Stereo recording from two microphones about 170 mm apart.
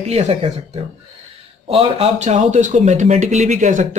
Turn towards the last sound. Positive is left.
turn(degrees=-45)  # may be behind; listen again after turning